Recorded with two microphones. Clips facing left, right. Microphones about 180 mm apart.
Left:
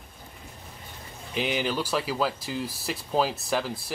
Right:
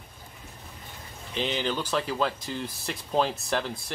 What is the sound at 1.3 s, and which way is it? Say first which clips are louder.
Speech: left 1 dB; 10° left (ahead or behind).